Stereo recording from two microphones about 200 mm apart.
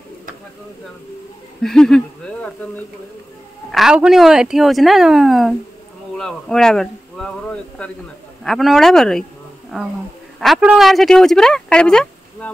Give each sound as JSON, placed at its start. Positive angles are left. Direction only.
{"t": 1.6, "sound": "speech", "side_deg": 0}